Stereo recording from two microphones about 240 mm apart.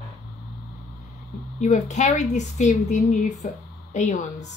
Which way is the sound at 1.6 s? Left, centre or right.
Left.